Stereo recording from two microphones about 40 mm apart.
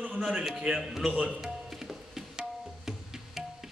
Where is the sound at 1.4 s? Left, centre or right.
Centre.